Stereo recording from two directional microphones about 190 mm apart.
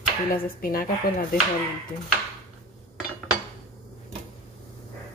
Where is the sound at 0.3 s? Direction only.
50° left (ahead or behind).